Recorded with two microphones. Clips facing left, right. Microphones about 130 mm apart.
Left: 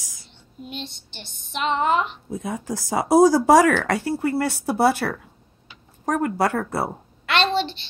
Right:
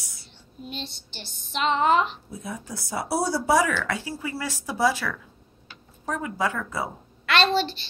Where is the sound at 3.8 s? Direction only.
65° left (ahead or behind).